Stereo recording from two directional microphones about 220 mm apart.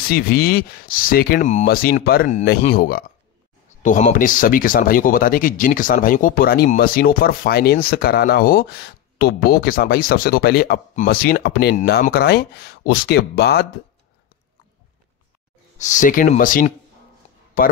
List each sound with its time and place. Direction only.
0.1 s speech: 45° left (ahead or behind)
15.8 s speech: 35° left (ahead or behind)
17.2 s music: 30° left (ahead or behind)